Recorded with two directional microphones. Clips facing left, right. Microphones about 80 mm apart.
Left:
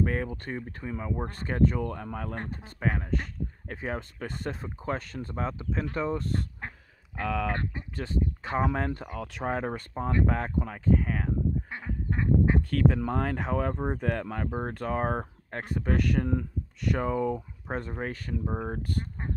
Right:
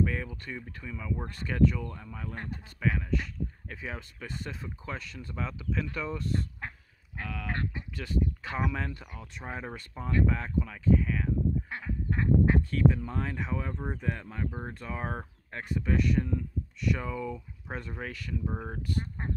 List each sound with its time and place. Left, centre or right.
0.0 s speech: left
1.9 s speech: left
2.4 s speech: left
7.2 s speech: left
7.5 s speech: left
9.2 s speech: left
11.7 s duck: centre
12.6 s speech: left
16.8 s speech: left
18.4 s speech: centre
18.7 s speech: left